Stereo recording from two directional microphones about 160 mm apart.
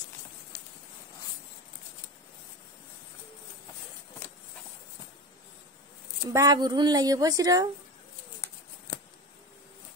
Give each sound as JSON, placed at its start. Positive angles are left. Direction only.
{"t": 6.3, "sound": "a woman's voice", "side_deg": -20}